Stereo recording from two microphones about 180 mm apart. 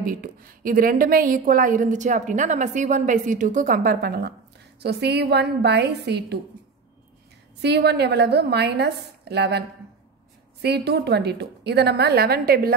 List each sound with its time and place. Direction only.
0.0 s a woman's voice: 50° right (ahead or behind); by 6.3 s 65° right (ahead or behind)
7.6 s a woman's voice: 70° right (ahead or behind)